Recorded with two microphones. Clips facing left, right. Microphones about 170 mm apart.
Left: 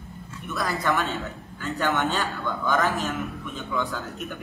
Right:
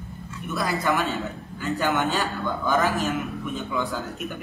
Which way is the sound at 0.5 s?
10° right (ahead or behind).